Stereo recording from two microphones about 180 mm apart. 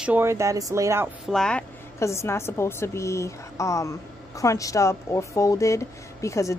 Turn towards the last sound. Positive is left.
turn(degrees=15)  # may be behind; listen again after turning